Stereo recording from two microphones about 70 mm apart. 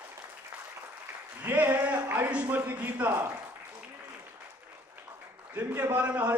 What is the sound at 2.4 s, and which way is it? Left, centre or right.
Speech, right.